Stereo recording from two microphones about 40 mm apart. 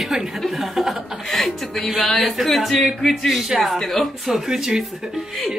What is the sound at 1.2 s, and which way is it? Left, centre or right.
A woman's voice, centre.